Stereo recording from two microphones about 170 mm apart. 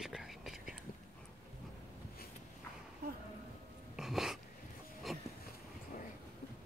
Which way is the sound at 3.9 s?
Centre (ahead or behind).